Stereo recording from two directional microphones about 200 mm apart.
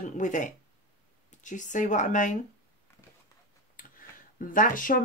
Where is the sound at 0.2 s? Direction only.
40° left (ahead or behind).